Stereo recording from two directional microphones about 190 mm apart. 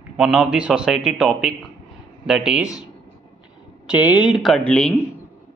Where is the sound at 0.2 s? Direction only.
5° right (ahead or behind).